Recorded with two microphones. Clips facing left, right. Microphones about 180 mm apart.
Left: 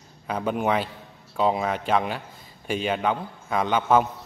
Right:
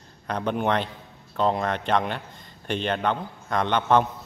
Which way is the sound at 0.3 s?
5° left (ahead or behind).